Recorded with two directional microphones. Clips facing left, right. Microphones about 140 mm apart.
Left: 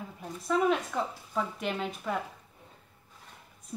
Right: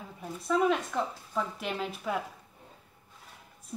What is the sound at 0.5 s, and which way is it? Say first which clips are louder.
Speech: even; centre (ahead or behind).